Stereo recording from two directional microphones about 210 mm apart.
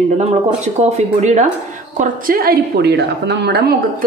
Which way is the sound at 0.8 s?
35° right (ahead or behind).